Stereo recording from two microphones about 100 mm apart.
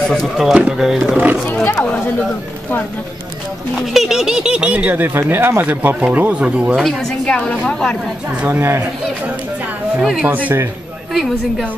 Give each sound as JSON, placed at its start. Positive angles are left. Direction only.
{"t": 0.1, "sound": "speech", "side_deg": 0}
{"t": 1.5, "sound": "speech", "side_deg": 20}
{"t": 3.7, "sound": "speech", "side_deg": 0}
{"t": 6.8, "sound": "a woman's voice", "side_deg": 5}
{"t": 8.5, "sound": "speech", "side_deg": -25}
{"t": 10.2, "sound": "speech", "side_deg": -15}
{"t": 11.1, "sound": "speech", "side_deg": 0}